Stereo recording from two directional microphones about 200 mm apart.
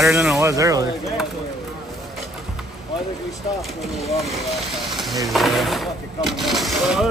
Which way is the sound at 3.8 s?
Centre (ahead or behind).